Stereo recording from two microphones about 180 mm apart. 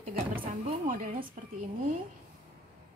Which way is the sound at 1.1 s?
30° right (ahead or behind).